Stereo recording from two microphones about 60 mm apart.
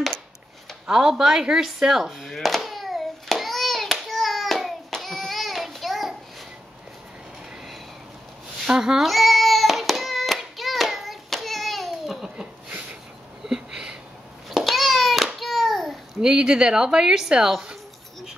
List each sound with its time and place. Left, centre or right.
0.8 s speech: centre
2.3 s hands: centre
8.6 s hands: centre
12.4 s a sound: centre
16.2 s speech: centre